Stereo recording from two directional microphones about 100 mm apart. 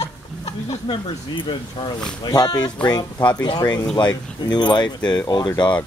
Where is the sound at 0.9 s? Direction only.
55° left (ahead or behind).